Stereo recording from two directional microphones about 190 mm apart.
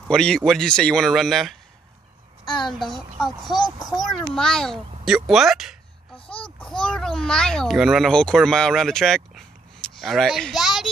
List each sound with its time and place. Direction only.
0.1 s speech: 5° left (ahead or behind)
3.2 s a child's voice: centre (ahead or behind)